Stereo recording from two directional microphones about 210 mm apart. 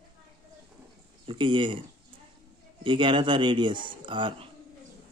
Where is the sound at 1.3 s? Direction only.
25° right (ahead or behind).